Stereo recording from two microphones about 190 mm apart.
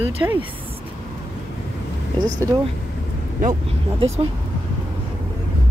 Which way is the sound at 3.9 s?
35° right (ahead or behind).